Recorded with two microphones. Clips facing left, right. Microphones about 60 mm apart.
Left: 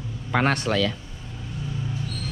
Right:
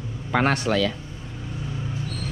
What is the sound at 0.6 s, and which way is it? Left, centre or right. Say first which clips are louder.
Speech: right 1 dB; right.